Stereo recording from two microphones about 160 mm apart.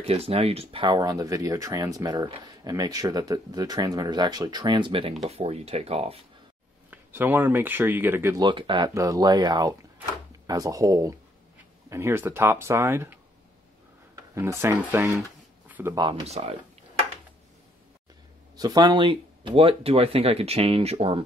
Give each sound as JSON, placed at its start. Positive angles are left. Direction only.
{"t": 0.0, "sound": "speech", "side_deg": -40}
{"t": 6.9, "sound": "speech", "side_deg": -10}
{"t": 8.5, "sound": "speech", "side_deg": -30}
{"t": 14.3, "sound": "speech", "side_deg": -15}
{"t": 16.0, "sound": "speech", "side_deg": -30}
{"t": 16.3, "sound": "speech", "side_deg": -40}
{"t": 18.6, "sound": "speech", "side_deg": -25}